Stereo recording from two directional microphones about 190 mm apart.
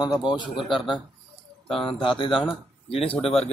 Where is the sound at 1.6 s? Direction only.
30° left (ahead or behind).